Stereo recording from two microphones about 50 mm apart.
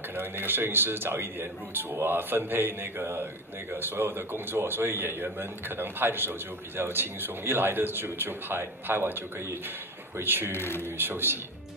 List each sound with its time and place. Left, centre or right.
0.5 s speech: right
10.5 s speech: left
11.0 s speech: right